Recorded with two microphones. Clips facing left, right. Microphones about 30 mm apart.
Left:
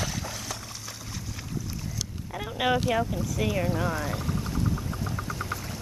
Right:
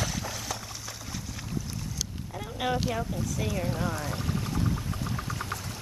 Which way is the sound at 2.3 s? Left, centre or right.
Left.